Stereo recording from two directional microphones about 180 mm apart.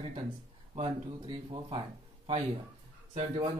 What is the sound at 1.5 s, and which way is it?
Speech, 30° right (ahead or behind).